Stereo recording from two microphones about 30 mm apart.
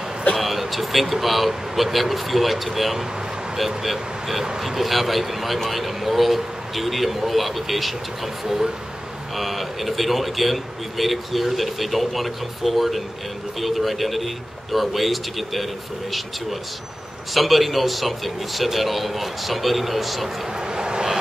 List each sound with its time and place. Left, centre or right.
0.4 s speech: centre
9.4 s speech: centre
17.3 s speech: centre
20.6 s a sound: right